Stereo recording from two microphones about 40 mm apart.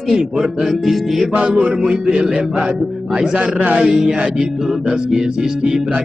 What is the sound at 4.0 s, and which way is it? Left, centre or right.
Speech, right.